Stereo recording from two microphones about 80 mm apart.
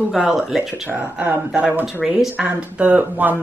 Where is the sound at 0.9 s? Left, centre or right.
Right.